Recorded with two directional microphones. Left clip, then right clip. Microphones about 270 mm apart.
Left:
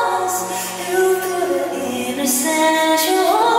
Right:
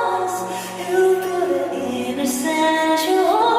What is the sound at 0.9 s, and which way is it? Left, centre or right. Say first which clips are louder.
Music: even; centre.